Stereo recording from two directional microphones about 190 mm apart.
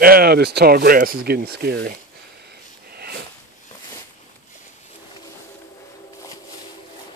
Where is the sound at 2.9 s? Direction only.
55° right (ahead or behind).